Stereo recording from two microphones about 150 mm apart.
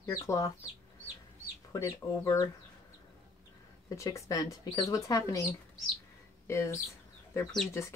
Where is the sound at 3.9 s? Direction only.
20° left (ahead or behind).